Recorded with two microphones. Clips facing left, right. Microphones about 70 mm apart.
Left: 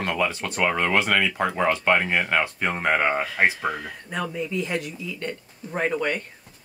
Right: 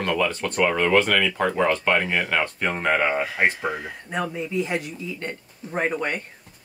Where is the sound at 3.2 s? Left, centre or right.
Centre.